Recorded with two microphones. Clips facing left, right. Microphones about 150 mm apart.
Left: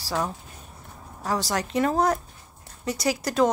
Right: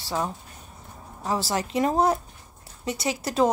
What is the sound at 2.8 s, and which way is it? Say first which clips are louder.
Speech: left 2 dB; centre (ahead or behind).